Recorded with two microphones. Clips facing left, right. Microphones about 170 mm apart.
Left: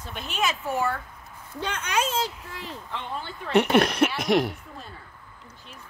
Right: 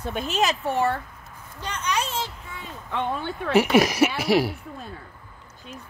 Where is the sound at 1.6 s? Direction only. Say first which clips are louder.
Even; 60° left (ahead or behind).